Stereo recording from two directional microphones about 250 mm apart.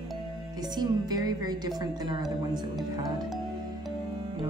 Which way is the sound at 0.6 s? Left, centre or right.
Centre.